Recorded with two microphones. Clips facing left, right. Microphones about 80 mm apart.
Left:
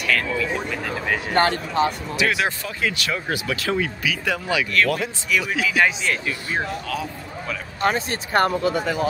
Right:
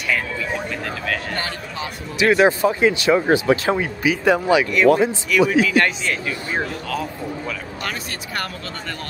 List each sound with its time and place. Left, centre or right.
0.1 s a sound: centre
1.3 s speech: left
2.1 s speech: right
5.5 s speech: centre
7.8 s speech: left
8.6 s speech: centre